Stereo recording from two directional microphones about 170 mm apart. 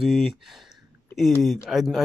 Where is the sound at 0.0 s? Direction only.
Centre (ahead or behind).